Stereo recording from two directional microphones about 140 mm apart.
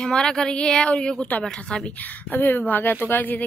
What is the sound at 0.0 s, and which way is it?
A woman's voice, 5° left (ahead or behind).